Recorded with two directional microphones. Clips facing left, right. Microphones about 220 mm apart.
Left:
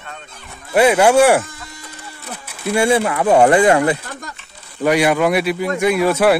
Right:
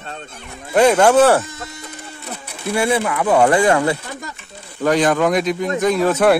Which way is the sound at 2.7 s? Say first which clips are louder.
Left 3 dB; 25° left (ahead or behind).